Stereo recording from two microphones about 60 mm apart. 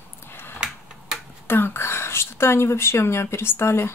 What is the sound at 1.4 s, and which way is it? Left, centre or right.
A woman's voice, left.